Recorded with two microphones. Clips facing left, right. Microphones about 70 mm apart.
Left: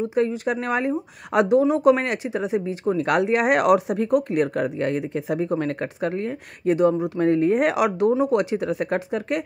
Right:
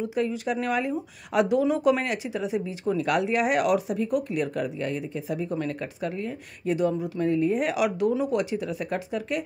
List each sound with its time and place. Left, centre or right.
0.0 s speech: left